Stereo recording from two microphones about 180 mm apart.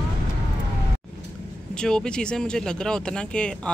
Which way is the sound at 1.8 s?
5° left (ahead or behind).